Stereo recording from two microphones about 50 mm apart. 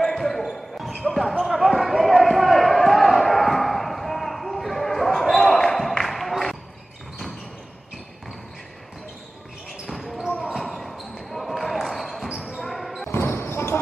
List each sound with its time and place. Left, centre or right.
0.0 s basketball bounce: centre
9.8 s basketball bounce: centre
13.0 s basketball bounce: left